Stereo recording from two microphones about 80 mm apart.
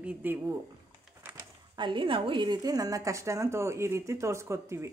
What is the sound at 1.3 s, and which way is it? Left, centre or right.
A woman's voice, right.